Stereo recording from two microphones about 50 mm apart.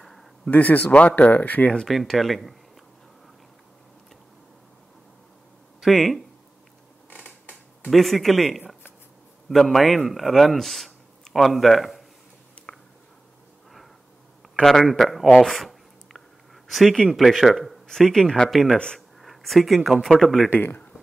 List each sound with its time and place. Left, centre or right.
0.5 s speech: left
1.9 s a man's voice: centre
5.8 s speech: centre
7.2 s a sound: left
7.9 s a man's voice: centre
12.7 s a sound: centre
14.5 s a man's voice: centre
15.4 s a sound: centre
16.6 s a man's voice: centre
18.9 s a sound: centre
20.1 s a man's voice: centre
20.4 s speech: left